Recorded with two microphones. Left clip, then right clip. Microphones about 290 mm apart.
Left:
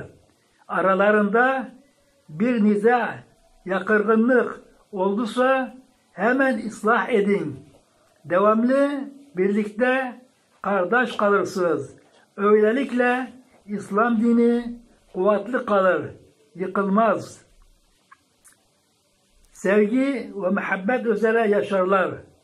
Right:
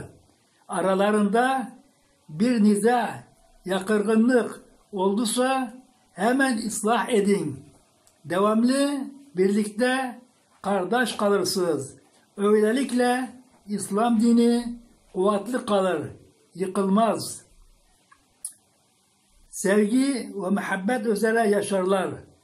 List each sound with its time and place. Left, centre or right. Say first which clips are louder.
0.7 s speech: left 4 dB; right
19.6 s speech: left 2 dB; right